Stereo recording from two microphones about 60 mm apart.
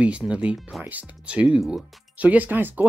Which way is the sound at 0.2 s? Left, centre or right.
Centre.